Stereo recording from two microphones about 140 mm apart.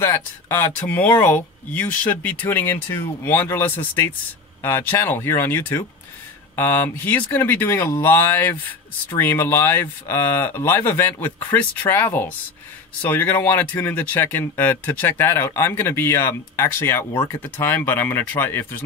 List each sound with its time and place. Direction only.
0.0 s speech: 15° left (ahead or behind)